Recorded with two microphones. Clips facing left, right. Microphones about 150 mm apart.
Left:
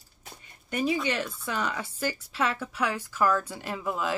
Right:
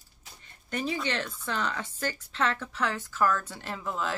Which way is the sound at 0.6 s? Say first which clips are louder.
Left 4 dB; 10° left (ahead or behind).